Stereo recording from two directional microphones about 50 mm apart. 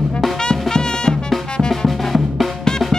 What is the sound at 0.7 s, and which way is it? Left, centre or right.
Music, centre.